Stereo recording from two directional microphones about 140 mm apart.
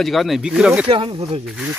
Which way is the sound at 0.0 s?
Centre (ahead or behind).